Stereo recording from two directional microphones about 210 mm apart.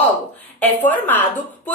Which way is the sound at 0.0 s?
10° left (ahead or behind).